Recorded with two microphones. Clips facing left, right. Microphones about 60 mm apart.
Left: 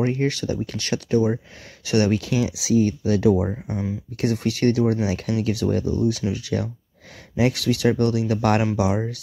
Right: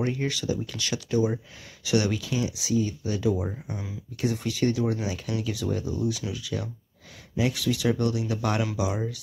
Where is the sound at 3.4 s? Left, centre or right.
Centre.